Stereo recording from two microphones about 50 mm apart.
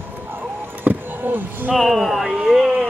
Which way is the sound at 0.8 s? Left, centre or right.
Right.